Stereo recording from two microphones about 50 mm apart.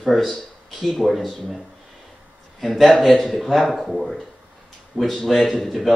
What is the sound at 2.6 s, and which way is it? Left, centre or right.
Speech, centre.